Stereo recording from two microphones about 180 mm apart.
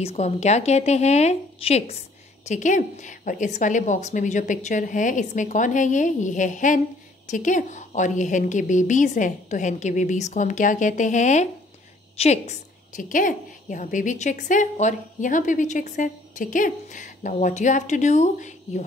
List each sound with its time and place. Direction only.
0.0 s a woman's voice: 35° left (ahead or behind)